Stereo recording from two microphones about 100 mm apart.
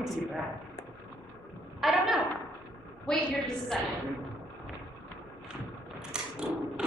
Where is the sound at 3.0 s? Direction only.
5° left (ahead or behind).